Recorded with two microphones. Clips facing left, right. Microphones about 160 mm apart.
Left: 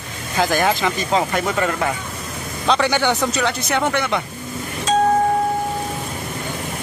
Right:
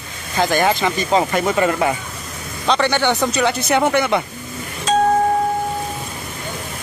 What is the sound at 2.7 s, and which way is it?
Speech, 5° left (ahead or behind).